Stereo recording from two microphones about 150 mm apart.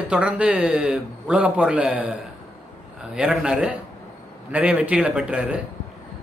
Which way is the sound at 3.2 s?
5° right (ahead or behind).